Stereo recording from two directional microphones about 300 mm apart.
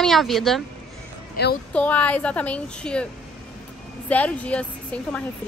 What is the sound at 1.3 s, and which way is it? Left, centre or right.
Speech, left.